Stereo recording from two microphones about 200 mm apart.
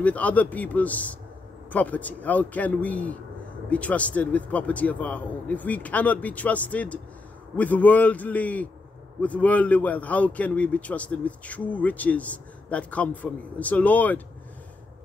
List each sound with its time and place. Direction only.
0.0 s a man's voice: 5° left (ahead or behind)